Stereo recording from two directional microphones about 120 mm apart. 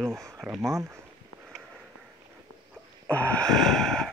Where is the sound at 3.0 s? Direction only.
10° left (ahead or behind).